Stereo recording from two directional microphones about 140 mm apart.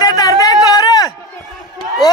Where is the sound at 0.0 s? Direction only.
25° left (ahead or behind).